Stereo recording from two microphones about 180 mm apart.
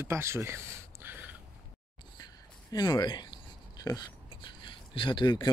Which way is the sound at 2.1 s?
25° left (ahead or behind).